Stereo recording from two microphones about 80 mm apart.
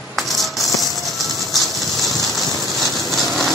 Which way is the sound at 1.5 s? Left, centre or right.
Centre.